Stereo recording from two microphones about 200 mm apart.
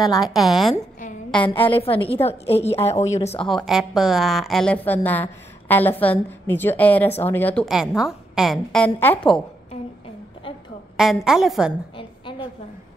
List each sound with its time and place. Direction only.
0.2 s a woman's voice: centre (ahead or behind)
1.5 s a woman's voice: 25° left (ahead or behind)
3.4 s a woman's voice: centre (ahead or behind)
7.6 s a woman's voice: centre (ahead or behind)
9.2 s a woman's voice: 25° left (ahead or behind)
11.0 s a woman's voice: centre (ahead or behind)
12.0 s a sound: 25° left (ahead or behind)